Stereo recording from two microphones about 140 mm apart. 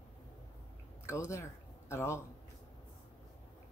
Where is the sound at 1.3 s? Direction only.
20° left (ahead or behind).